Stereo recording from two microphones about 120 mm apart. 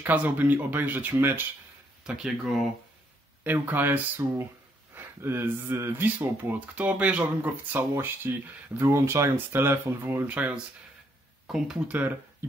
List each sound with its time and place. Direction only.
0.0 s speech: 15° right (ahead or behind)
2.0 s speech: 5° right (ahead or behind)
3.4 s speech: 15° right (ahead or behind)